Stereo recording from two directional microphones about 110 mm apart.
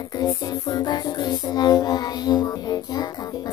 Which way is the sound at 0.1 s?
35° left (ahead or behind).